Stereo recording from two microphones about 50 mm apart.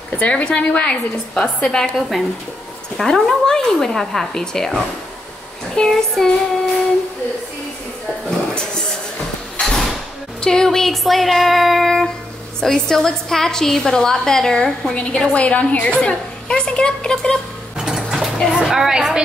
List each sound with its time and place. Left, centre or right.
0.2 s a woman's voice: left
1.6 s a woman's voice: centre
5.9 s a woman's voice: centre
9.6 s sliding door: centre
10.4 s a sound: centre
12.5 s a woman's voice: centre
17.7 s a sound: centre
18.5 s a woman's voice: centre